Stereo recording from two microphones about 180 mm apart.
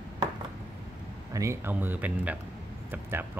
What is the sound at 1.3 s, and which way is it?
Speech, 15° right (ahead or behind).